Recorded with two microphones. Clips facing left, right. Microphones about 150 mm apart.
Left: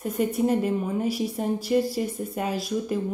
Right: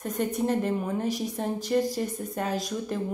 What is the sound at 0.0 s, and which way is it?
A woman's voice, 10° left (ahead or behind).